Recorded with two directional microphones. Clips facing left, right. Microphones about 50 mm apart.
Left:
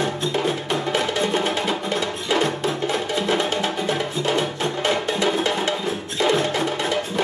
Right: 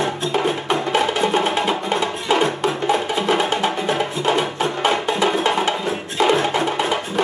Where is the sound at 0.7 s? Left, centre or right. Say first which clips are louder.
Right 4 dB; right.